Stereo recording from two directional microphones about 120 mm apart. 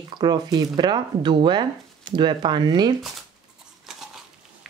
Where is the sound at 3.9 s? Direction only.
5° right (ahead or behind).